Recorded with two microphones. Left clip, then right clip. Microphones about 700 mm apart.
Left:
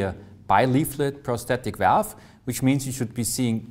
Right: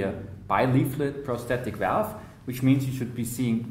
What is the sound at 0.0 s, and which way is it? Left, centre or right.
Speech, left.